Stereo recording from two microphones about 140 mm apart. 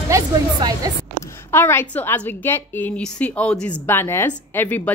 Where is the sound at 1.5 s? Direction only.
15° left (ahead or behind).